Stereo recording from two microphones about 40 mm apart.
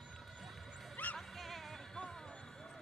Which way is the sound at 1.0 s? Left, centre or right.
Left.